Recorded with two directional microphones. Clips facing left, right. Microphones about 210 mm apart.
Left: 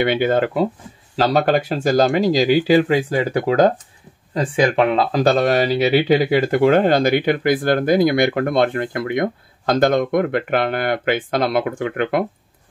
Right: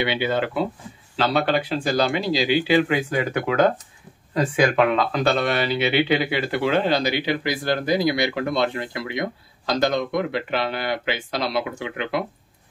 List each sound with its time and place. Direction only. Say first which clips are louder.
0.0 s speech: left 6 dB; 50° left (ahead or behind)